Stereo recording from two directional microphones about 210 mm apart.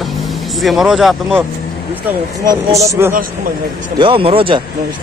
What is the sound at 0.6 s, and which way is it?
Speech, centre (ahead or behind).